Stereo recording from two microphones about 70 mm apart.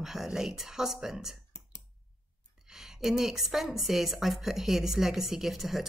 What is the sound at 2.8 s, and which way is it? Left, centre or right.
Speech, centre.